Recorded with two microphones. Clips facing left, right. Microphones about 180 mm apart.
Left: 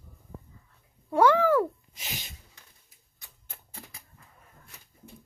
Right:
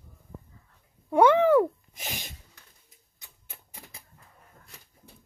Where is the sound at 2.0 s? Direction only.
50° right (ahead or behind).